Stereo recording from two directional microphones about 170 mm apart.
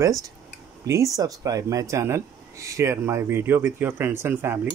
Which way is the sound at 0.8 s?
20° right (ahead or behind).